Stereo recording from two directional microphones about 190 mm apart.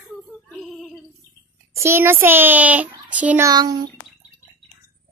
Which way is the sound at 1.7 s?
15° right (ahead or behind).